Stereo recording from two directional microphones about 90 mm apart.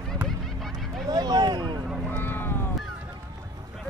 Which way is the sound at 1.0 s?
50° right (ahead or behind).